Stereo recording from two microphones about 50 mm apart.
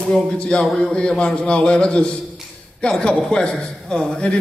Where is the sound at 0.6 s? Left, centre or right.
Centre.